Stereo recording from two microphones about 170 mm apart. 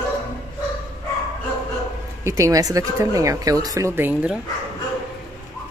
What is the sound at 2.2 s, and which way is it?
Speech, 20° right (ahead or behind).